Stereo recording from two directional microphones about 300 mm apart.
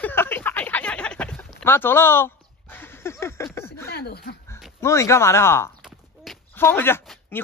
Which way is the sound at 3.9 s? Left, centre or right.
Left.